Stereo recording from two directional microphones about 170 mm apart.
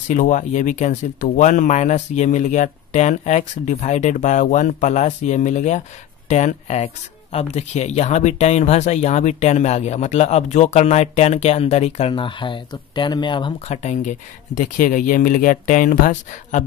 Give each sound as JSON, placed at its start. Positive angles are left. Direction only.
{"t": 0.1, "sound": "speech", "side_deg": 50}
{"t": 14.6, "sound": "speech", "side_deg": 50}